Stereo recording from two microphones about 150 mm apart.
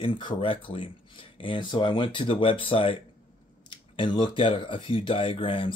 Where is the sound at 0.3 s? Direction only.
30° left (ahead or behind).